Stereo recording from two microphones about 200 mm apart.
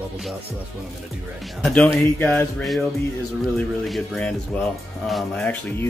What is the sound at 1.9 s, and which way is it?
Speech, 10° left (ahead or behind).